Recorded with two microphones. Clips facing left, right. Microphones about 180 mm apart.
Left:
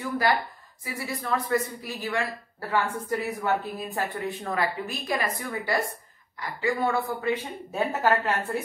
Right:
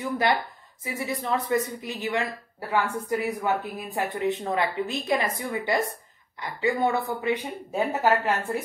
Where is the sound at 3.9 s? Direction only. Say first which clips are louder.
Right 6 dB; 20° right (ahead or behind).